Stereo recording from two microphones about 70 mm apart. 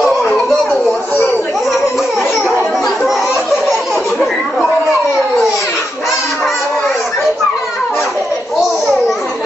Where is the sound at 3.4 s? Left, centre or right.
Centre.